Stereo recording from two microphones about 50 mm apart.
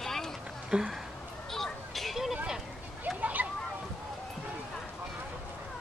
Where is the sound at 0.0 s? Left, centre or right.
Centre.